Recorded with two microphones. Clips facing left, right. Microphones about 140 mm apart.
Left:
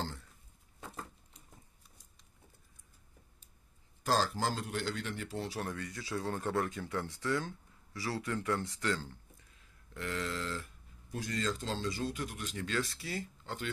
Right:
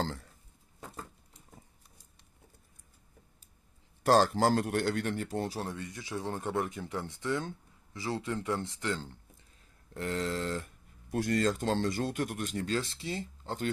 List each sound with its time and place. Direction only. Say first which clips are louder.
4.0 s speech: right 7 dB; 60° right (ahead or behind)
5.6 s speech: right 1 dB; 20° right (ahead or behind)
9.9 s speech: right 5 dB; 40° right (ahead or behind)
12.6 s speech: even; 30° right (ahead or behind)
13.4 s a sound: right 5 dB; 40° right (ahead or behind)